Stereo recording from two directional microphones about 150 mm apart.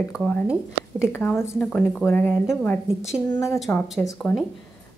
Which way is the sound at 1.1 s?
15° left (ahead or behind).